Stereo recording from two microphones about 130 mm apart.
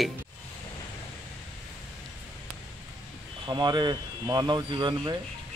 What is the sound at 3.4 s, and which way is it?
Speech, 35° right (ahead or behind).